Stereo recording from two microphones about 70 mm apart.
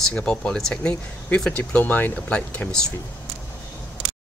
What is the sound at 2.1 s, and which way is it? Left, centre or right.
Speech, centre.